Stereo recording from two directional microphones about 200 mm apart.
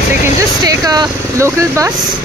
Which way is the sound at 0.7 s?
20° right (ahead or behind).